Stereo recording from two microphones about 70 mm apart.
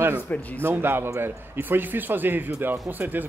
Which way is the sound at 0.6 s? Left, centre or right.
Right.